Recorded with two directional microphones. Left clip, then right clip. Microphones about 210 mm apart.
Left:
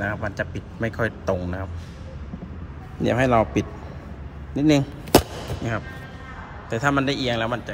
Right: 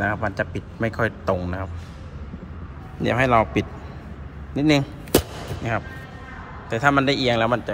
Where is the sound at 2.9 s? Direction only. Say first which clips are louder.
Right 1 dB; 15° left (ahead or behind).